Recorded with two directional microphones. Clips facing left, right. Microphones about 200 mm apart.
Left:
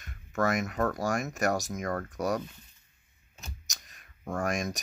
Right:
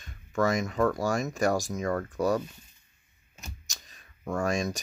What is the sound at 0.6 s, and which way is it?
Speech, 25° right (ahead or behind).